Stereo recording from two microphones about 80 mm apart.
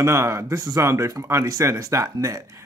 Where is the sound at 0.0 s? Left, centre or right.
Right.